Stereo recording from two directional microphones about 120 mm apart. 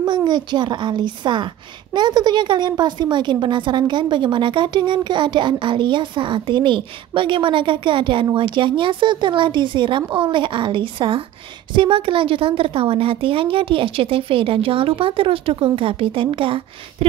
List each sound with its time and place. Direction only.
0.0 s a woman's voice: 40° right (ahead or behind)